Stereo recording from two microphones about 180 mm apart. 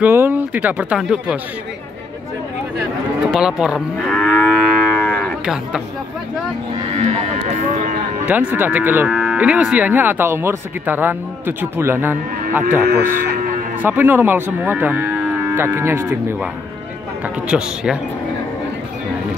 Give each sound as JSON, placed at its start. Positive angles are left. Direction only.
{"t": 0.0, "sound": "cattle", "side_deg": -10}
{"t": 3.3, "sound": "livestock", "side_deg": -5}
{"t": 5.0, "sound": "cattle", "side_deg": 5}
{"t": 7.5, "sound": "a sound", "side_deg": -45}
{"t": 8.3, "sound": "cattle", "side_deg": -10}
{"t": 12.9, "sound": "hum", "side_deg": -50}
{"t": 13.8, "sound": "cattle", "side_deg": -10}
{"t": 17.5, "sound": "speech", "side_deg": -5}